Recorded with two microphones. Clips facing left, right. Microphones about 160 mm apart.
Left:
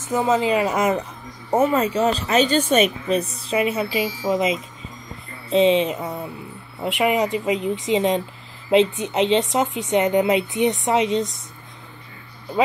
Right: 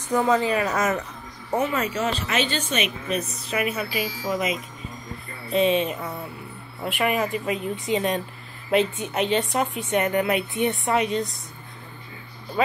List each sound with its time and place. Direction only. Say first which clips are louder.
0.0 s a woman's voice: left 1 dB; 20° left (ahead or behind)
1.5 s a woman's voice: left 6 dB; 40° left (ahead or behind); by 11.2 s 20° left (ahead or behind)